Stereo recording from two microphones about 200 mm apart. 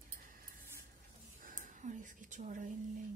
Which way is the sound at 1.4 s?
40° right (ahead or behind).